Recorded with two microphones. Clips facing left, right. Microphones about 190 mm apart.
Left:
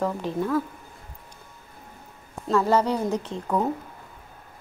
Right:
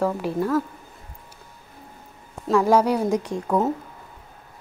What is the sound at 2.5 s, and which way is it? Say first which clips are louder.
A woman's voice: right 3 dB; 10° right (ahead or behind).